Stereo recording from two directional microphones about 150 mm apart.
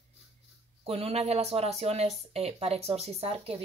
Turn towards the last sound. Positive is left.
turn(degrees=-40)  # may be behind; listen again after turning